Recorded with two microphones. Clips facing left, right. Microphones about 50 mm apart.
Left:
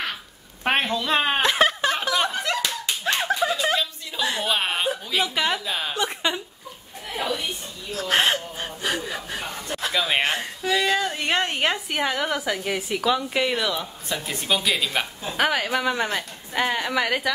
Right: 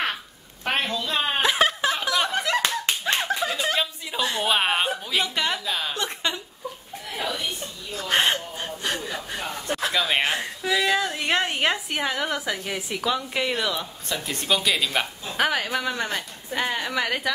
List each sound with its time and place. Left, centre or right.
0.9 s speech: left
1.4 s a sound: centre
2.0 s snicker: centre
2.5 s clapping: right
3.3 s chuckle: centre
3.7 s chuckle: centre
4.2 s a sound: centre
4.5 s a sound: centre
5.1 s a woman's voice: centre
7.9 s gasp: centre
9.8 s speech: centre